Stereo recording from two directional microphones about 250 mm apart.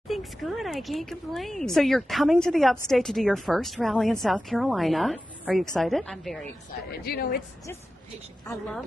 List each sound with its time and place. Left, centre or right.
0.1 s a woman's voice: centre
6.9 s a woman's voice: left
8.5 s a woman's voice: centre